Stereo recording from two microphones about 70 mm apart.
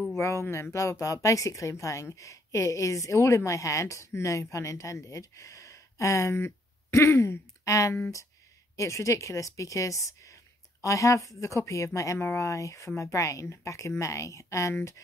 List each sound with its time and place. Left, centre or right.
0.1 s speech: left